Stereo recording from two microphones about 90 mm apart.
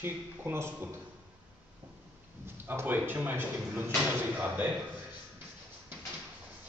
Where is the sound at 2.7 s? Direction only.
20° right (ahead or behind).